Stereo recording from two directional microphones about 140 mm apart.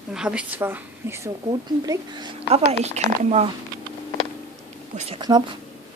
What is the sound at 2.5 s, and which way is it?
A woman's voice, 50° right (ahead or behind).